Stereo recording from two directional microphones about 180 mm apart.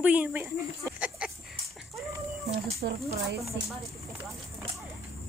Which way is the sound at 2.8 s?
70° right (ahead or behind).